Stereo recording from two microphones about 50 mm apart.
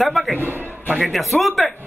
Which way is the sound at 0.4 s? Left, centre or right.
Right.